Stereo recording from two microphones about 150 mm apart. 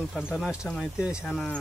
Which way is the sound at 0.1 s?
5° right (ahead or behind).